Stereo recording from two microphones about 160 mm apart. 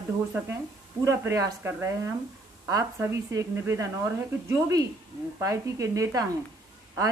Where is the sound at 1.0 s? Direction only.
20° right (ahead or behind).